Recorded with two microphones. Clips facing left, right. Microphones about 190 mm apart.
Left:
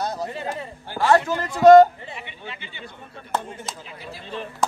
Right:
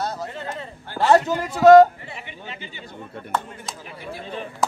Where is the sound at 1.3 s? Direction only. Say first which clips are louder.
Left 1 dB; 10° right (ahead or behind).